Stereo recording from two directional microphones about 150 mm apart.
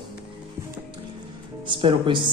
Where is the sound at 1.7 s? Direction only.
35° right (ahead or behind).